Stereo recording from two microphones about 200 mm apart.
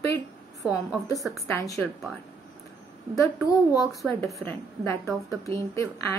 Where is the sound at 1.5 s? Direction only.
15° left (ahead or behind).